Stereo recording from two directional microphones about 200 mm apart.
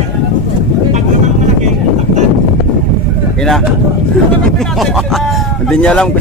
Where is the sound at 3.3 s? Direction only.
Centre (ahead or behind).